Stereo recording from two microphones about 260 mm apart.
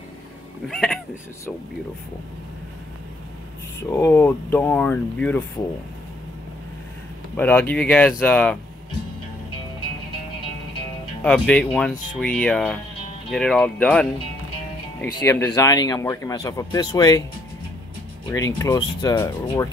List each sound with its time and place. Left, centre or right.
0.7 s speech: centre
3.9 s speech: centre
7.3 s speech: centre
11.2 s speech: centre
15.1 s speech: centre
18.3 s speech: centre